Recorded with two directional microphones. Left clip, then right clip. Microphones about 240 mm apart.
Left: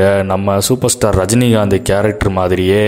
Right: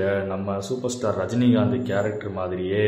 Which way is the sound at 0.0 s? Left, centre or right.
Left.